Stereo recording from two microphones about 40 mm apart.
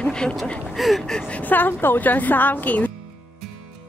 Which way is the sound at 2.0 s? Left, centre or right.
Left.